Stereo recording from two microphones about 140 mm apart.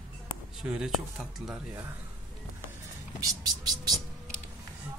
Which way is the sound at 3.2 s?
30° right (ahead or behind).